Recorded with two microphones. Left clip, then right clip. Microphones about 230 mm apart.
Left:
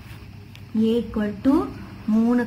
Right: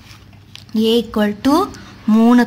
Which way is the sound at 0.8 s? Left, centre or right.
Right.